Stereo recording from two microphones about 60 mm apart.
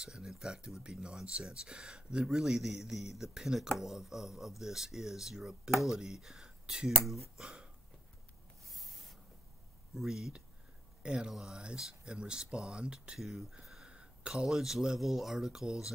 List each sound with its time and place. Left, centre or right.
0.0 s speech: centre
7.3 s hiccup: centre
8.6 s rub: centre
9.9 s speech: centre
13.2 s speech: centre